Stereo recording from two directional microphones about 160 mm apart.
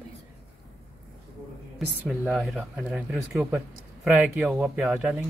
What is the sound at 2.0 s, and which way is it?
Speech, centre (ahead or behind).